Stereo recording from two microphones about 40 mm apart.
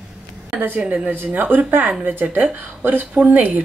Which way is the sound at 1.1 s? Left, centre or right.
Right.